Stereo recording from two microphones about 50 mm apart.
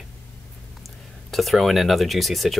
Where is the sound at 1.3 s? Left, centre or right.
Centre.